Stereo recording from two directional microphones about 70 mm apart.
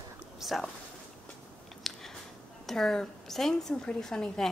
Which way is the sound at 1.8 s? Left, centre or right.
Centre.